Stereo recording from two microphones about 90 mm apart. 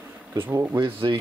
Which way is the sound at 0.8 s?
75° right (ahead or behind).